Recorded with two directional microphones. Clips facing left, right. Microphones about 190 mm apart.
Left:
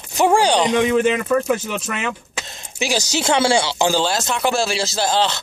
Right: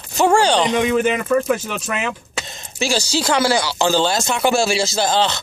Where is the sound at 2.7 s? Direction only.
15° left (ahead or behind).